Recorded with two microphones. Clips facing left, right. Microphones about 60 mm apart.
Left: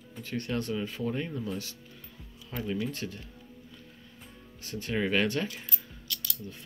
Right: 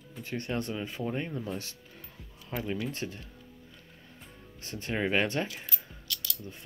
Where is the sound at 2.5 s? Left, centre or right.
Centre.